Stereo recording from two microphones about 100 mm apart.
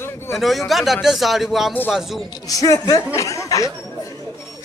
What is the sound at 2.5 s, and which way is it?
Snicker, 35° left (ahead or behind).